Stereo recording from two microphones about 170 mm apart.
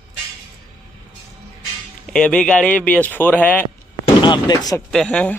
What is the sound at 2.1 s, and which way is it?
Speech, 5° left (ahead or behind).